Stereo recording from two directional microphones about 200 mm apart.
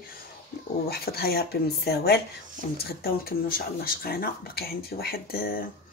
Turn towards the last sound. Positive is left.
turn(degrees=50)  # may be behind; listen again after turning